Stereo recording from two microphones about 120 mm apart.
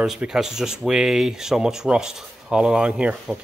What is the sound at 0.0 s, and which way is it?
Speech, 5° right (ahead or behind).